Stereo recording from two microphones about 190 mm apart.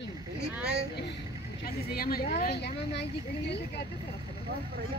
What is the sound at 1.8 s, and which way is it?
Speech, 50° left (ahead or behind).